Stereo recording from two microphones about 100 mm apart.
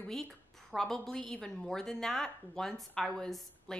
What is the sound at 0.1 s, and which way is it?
A woman's voice, 5° left (ahead or behind).